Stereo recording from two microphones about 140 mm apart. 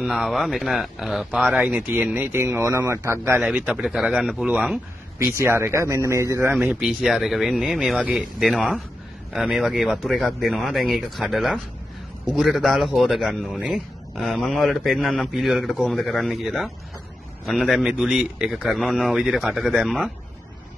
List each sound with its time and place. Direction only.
0.0 s a man's voice: centre (ahead or behind)
5.3 s speech: 20° right (ahead or behind)
6.8 s a man's voice: 5° right (ahead or behind)